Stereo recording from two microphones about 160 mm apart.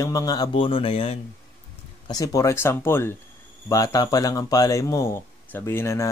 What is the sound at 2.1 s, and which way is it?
Speech, 25° left (ahead or behind).